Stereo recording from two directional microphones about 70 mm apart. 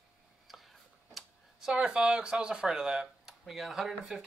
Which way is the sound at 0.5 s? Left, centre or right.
Centre.